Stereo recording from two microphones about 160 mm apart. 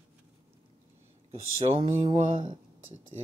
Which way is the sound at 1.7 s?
35° right (ahead or behind).